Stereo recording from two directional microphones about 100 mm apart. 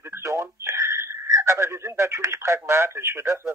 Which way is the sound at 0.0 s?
25° right (ahead or behind).